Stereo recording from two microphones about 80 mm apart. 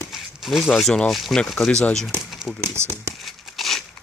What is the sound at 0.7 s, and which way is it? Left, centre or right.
Speech, centre.